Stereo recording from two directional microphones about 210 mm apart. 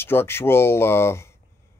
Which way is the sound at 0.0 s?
10° left (ahead or behind).